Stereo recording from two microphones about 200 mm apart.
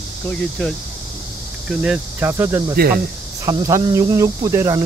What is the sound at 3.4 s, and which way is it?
Speech, 15° right (ahead or behind).